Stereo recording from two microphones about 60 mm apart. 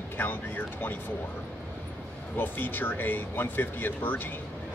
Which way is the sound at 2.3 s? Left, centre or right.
Left.